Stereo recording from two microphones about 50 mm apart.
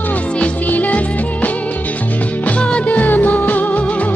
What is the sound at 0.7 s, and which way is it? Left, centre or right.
Music, left.